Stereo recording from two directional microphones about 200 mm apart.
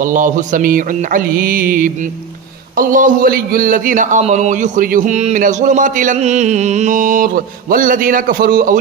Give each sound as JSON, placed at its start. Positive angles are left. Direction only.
{"t": 0.1, "sound": "music", "side_deg": -40}
{"t": 2.8, "sound": "a man's voice", "side_deg": -40}